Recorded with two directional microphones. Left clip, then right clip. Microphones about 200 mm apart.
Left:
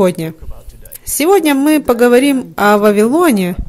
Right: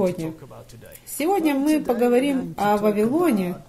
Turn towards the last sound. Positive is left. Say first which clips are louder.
# left 9 dB
turn(degrees=50)  # may be behind; listen again after turning